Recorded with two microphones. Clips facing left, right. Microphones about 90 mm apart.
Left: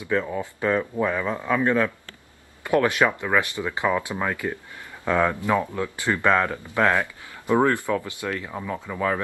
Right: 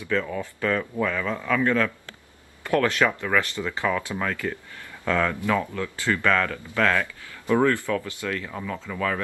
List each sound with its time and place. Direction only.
0.0 s speech: 20° left (ahead or behind)